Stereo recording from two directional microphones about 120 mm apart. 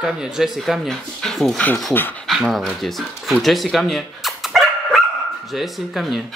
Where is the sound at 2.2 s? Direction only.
Centre (ahead or behind).